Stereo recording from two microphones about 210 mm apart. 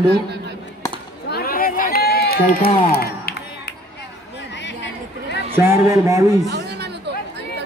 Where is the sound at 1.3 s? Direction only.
45° left (ahead or behind).